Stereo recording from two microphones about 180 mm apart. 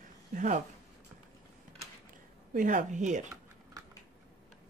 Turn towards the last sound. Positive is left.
turn(degrees=-40)  # may be behind; listen again after turning